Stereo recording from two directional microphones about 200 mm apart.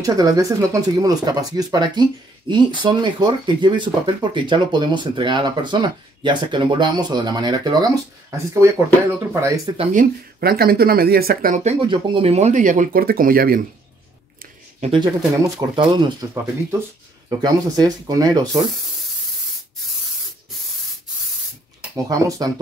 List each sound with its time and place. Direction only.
0.0 s speech: 15° right (ahead or behind)
9.9 s speech: 50° right (ahead or behind)
11.6 s speech: 25° right (ahead or behind); by 13.6 s 45° right (ahead or behind)
14.9 s speech: 25° right (ahead or behind)
17.4 s speech: 20° right (ahead or behind)
21.9 s speech: 15° right (ahead or behind)